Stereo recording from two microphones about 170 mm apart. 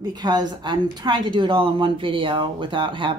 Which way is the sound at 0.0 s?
25° right (ahead or behind).